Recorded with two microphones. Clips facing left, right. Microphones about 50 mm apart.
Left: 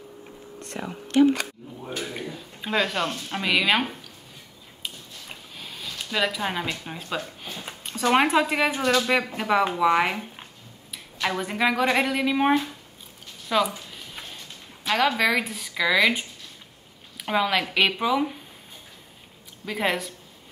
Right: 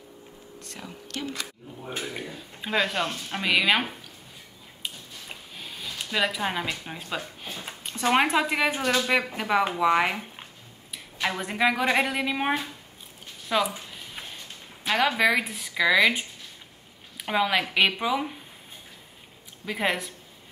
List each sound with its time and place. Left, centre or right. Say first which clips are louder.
0.7 s speech: left 7 dB; left
2.0 s speech: left 1 dB; centre
5.6 s speech: even; centre
7.6 s a sound: left 1 dB; centre
8.1 s speech: left 2 dB; centre
13.5 s a sound: left 2 dB; centre
14.9 s speech: even; centre
19.6 s speech: left 1 dB; centre